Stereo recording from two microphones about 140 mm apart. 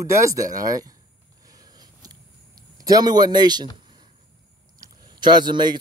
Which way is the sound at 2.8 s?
25° right (ahead or behind).